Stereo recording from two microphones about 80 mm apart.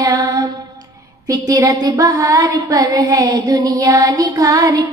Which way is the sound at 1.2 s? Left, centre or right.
Right.